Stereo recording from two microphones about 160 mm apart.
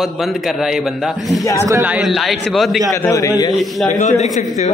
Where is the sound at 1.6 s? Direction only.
20° right (ahead or behind).